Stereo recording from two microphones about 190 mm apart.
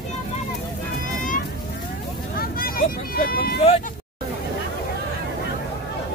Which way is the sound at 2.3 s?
50° left (ahead or behind).